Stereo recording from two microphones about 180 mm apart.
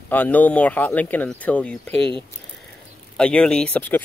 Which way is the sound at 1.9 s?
30° right (ahead or behind).